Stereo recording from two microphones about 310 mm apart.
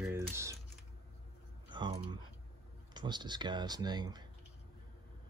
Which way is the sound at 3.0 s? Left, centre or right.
Centre.